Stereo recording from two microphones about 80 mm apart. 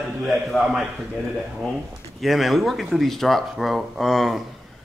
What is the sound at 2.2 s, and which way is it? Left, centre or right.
A man's voice, centre.